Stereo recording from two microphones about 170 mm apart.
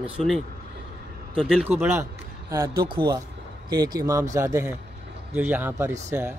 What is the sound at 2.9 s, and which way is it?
Speech, 30° right (ahead or behind).